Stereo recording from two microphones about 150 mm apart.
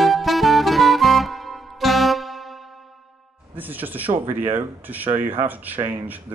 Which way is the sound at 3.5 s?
10° right (ahead or behind).